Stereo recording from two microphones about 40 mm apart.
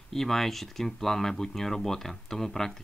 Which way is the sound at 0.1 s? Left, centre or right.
Centre.